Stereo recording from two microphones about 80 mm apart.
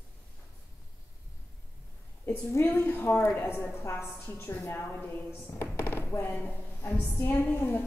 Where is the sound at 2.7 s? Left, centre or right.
Left.